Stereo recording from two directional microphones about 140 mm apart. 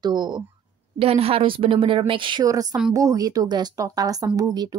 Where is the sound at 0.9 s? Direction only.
45° right (ahead or behind).